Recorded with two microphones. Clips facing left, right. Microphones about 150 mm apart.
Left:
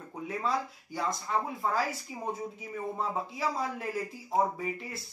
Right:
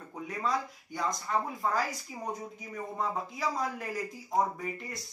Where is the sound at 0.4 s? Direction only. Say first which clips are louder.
Even; centre (ahead or behind).